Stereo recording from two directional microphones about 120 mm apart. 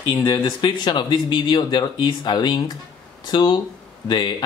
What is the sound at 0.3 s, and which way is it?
Speech, 35° left (ahead or behind).